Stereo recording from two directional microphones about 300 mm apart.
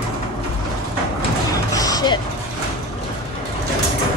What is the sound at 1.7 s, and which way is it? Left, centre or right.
Music, centre.